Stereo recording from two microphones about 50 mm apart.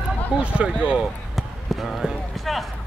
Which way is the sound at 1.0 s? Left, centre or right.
Centre.